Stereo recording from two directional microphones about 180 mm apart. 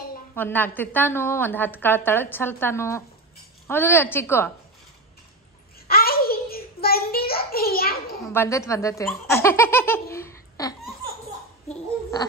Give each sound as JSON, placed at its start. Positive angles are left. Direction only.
{"t": 0.3, "sound": "a woman's voice", "side_deg": 10}
{"t": 5.9, "sound": "a sound", "side_deg": 55}
{"t": 8.3, "sound": "baby laughter", "side_deg": 15}